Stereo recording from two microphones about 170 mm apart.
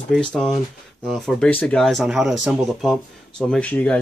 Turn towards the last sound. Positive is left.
turn(degrees=10)  # may be behind; listen again after turning